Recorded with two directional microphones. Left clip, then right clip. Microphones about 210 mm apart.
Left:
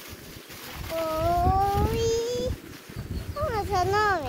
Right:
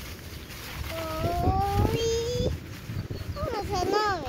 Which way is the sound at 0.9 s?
30° left (ahead or behind).